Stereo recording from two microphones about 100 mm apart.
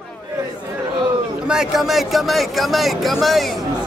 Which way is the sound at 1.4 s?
5° right (ahead or behind).